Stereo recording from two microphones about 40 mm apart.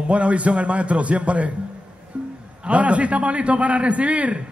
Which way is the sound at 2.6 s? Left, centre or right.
Right.